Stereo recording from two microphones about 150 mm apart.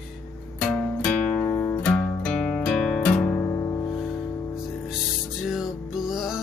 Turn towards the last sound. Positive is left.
turn(degrees=-5)  # may be behind; listen again after turning